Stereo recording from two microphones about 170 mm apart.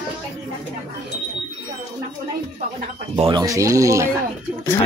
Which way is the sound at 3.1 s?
35° right (ahead or behind).